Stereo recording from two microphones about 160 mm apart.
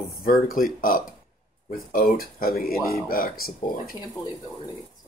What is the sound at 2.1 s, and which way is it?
Speech, 65° left (ahead or behind).